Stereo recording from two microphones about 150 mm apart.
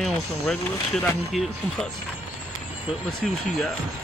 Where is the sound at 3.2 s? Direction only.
5° left (ahead or behind).